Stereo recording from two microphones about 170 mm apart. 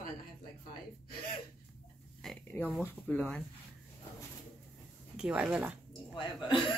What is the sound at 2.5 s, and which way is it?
Speech, 10° left (ahead or behind).